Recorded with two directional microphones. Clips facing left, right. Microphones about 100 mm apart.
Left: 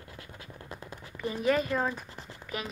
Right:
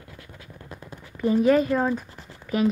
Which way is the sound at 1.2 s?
30° right (ahead or behind).